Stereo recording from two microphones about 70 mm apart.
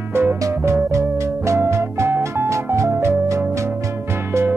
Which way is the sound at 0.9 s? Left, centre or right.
Right.